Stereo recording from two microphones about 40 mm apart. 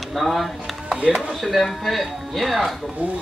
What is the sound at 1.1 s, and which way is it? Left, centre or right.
Speech, centre.